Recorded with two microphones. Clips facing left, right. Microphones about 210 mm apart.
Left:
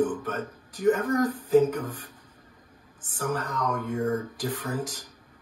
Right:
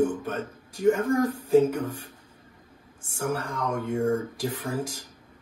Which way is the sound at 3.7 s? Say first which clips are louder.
Right 4 dB; 25° right (ahead or behind).